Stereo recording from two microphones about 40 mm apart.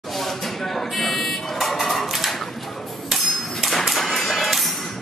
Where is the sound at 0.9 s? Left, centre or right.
Centre.